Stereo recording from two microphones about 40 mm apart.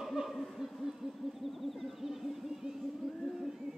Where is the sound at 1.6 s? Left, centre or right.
Centre.